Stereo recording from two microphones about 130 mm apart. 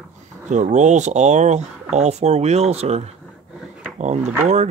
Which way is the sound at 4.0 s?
60° right (ahead or behind).